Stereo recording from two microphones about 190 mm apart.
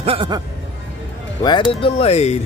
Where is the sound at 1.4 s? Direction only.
25° left (ahead or behind).